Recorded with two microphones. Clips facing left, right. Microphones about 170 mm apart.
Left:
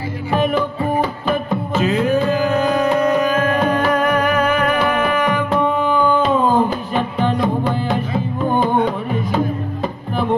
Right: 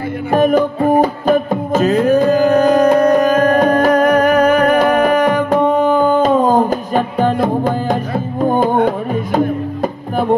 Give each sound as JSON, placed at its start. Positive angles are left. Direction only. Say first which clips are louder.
{"t": 0.3, "sound": "music", "louder": "right 6 dB", "side_deg": -40}
{"t": 8.7, "sound": "music", "louder": "right 3 dB", "side_deg": -55}